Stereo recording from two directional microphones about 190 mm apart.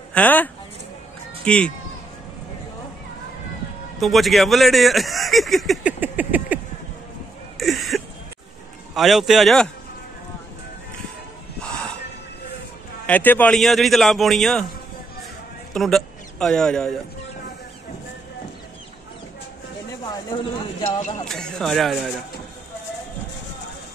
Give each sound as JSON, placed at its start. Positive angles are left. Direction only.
{"t": 0.1, "sound": "speech", "side_deg": 10}
{"t": 4.0, "sound": "speech", "side_deg": 0}
{"t": 5.9, "sound": "a sound", "side_deg": -10}
{"t": 8.9, "sound": "speech", "side_deg": 0}
{"t": 11.6, "sound": "a sound", "side_deg": 5}
{"t": 13.0, "sound": "speech", "side_deg": 10}
{"t": 15.7, "sound": "a sound", "side_deg": 0}
{"t": 20.8, "sound": "speech", "side_deg": 35}
{"t": 21.3, "sound": "speech", "side_deg": 5}